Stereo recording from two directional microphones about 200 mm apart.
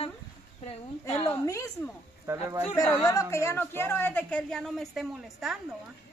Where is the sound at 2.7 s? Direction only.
15° left (ahead or behind); by 5.6 s centre (ahead or behind).